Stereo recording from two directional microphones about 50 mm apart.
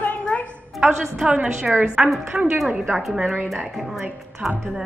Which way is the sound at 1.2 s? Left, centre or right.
Right.